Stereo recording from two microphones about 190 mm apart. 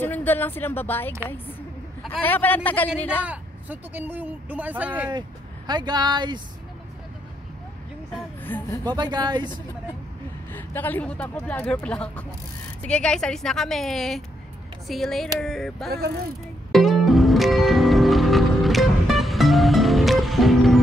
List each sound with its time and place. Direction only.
0.0 s speech: 10° left (ahead or behind)
2.2 s speech: 10° left (ahead or behind)
3.3 s speech: 10° right (ahead or behind)
5.7 s speech: 25° right (ahead or behind)
8.1 s speech: 10° left (ahead or behind)
8.8 s speech: 20° right (ahead or behind)
10.5 s a woman's voice: 10° left (ahead or behind)
16.7 s music: centre (ahead or behind)